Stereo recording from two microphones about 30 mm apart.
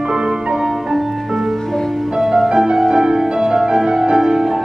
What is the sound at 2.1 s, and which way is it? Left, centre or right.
Music, centre.